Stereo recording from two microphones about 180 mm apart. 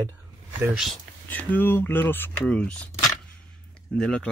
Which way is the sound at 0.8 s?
5° left (ahead or behind).